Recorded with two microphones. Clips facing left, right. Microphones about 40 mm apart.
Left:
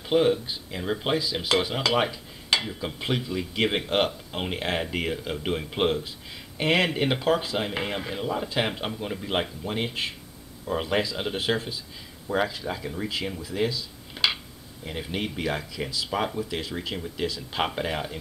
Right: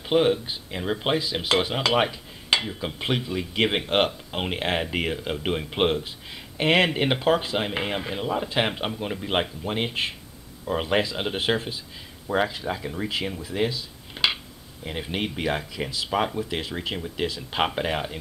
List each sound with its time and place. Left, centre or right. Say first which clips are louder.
0.1 s speech: right 1 dB; right
0.9 s cutlery: right 1 dB; centre
3.0 s speech: right 2 dB; right
12.3 s cutlery: right 2 dB; centre
13.1 s speech: right 2 dB; centre
14.1 s a sound: right 1 dB; centre
15.0 s speech: right 2 dB; right